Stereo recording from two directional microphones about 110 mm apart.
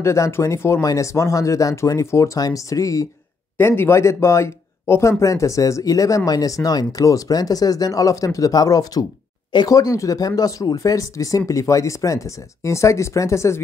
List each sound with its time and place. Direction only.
0.0 s speech: 25° left (ahead or behind)
3.5 s speech: 20° left (ahead or behind)